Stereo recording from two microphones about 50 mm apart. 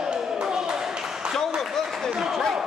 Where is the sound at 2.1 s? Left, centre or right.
Centre.